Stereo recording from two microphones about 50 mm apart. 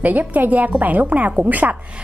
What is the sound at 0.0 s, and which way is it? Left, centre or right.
A woman's voice, right.